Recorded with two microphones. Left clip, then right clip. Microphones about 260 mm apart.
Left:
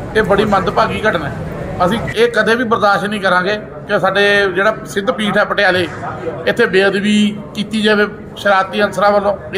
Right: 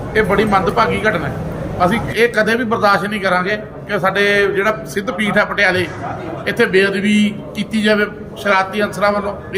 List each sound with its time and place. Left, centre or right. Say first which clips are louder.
0.1 s a man's voice: left 1 dB; centre